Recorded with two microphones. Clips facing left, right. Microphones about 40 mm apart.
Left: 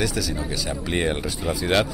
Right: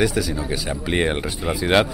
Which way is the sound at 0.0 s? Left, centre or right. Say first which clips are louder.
Right 4 dB; centre.